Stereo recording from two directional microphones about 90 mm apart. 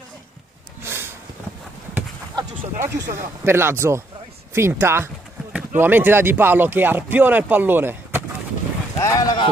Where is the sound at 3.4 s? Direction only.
25° right (ahead or behind).